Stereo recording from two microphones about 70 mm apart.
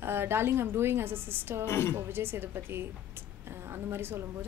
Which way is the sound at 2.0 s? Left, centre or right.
Right.